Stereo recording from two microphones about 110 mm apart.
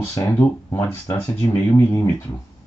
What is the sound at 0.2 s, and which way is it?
Speech, 25° left (ahead or behind).